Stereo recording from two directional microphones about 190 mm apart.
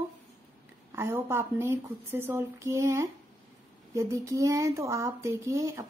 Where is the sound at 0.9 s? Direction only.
15° right (ahead or behind).